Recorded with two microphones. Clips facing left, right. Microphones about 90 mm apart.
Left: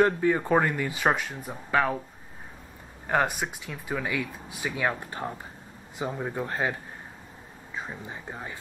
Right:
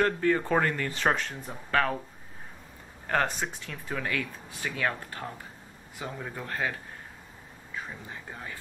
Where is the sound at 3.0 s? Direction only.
10° left (ahead or behind).